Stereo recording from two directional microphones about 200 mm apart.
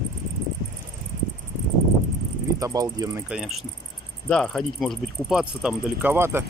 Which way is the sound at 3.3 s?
5° right (ahead or behind).